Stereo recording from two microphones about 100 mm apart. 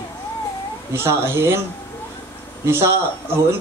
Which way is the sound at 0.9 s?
25° right (ahead or behind).